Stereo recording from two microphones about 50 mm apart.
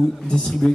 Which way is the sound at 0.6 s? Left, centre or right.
Centre.